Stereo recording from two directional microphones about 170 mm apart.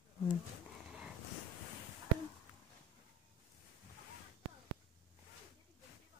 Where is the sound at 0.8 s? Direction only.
5° right (ahead or behind).